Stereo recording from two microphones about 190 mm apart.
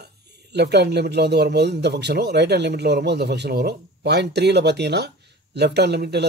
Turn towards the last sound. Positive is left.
turn(degrees=-60)  # may be behind; listen again after turning